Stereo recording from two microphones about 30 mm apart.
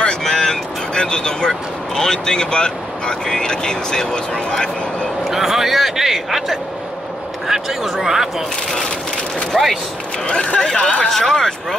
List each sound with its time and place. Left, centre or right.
0.2 s vehicle: centre
0.9 s speech: left
5.2 s speech: centre
9.5 s speech: centre
10.2 s speech: left
11.1 s speech: centre